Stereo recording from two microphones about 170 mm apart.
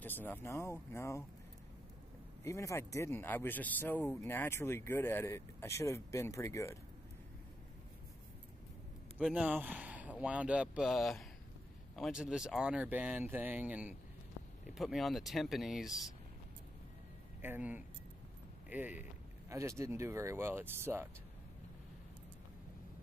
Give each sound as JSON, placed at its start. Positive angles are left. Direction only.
{"t": 0.0, "sound": "speech", "side_deg": 10}
{"t": 2.4, "sound": "speech", "side_deg": 15}
{"t": 9.2, "sound": "speech", "side_deg": -5}
{"t": 17.4, "sound": "speech", "side_deg": -10}